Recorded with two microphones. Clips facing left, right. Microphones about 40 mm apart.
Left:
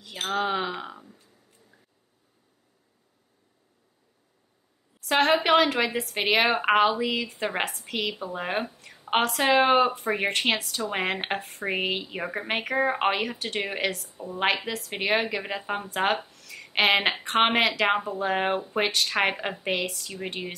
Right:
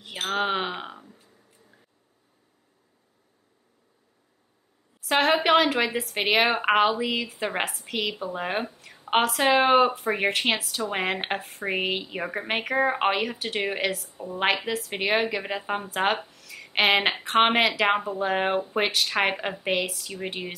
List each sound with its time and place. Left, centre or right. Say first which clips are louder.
0.3 s speech: right 1 dB; right
5.0 s a woman's voice: even; centre